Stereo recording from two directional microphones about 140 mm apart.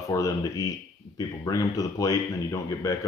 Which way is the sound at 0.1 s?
25° left (ahead or behind).